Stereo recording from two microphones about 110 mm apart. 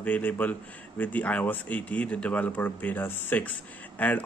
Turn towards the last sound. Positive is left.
turn(degrees=15)  # may be behind; listen again after turning